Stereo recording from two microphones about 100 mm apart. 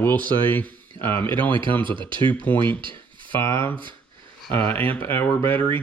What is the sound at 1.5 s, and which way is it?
Speech, 55° right (ahead or behind).